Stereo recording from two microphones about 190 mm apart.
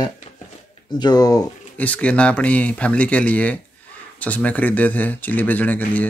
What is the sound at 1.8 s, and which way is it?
Speech, 5° left (ahead or behind).